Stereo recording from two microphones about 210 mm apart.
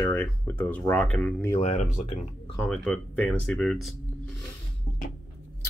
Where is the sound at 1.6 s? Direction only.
35° left (ahead or behind).